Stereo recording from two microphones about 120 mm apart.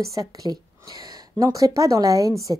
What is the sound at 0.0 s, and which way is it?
A woman's voice, 30° right (ahead or behind).